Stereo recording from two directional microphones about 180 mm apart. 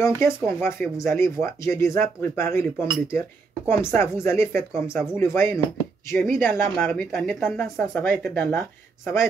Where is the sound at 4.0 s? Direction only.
15° left (ahead or behind).